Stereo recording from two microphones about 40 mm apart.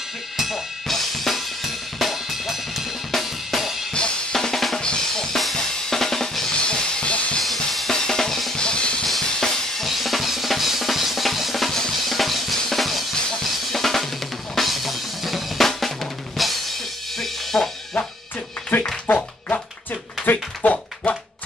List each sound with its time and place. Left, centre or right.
0.8 s drum kit: centre
3.9 s drum kit: left
6.6 s music: left
7.4 s drum kit: centre
7.9 s drum kit: centre
8.5 s drum kit: left
9.0 s drum kit: centre
9.8 s drum: centre
11.7 s music: centre
14.5 s drum kit: centre
18.7 s music: left
19.0 s music: left
20.3 s a sound: left
20.7 s dog: left